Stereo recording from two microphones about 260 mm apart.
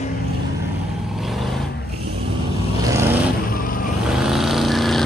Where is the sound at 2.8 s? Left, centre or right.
Centre.